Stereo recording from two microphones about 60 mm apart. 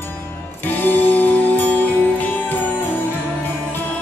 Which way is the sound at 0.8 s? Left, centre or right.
Left.